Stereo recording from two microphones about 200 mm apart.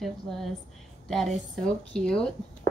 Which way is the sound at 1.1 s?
Centre (ahead or behind).